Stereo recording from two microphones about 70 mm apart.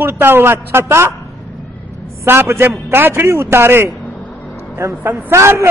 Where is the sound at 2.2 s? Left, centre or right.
Right.